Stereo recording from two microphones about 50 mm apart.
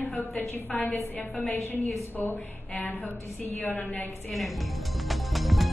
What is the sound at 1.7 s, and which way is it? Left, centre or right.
Speech, left.